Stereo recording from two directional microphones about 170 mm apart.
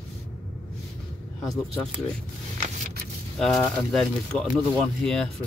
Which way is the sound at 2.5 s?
45° right (ahead or behind).